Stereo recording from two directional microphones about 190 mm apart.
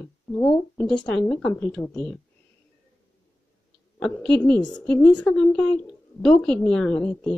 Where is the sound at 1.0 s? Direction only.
5° left (ahead or behind).